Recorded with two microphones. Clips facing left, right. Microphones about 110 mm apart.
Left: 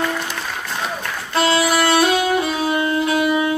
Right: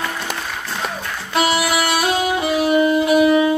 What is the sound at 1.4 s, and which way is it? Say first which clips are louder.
Music: left 1 dB; 10° right (ahead or behind).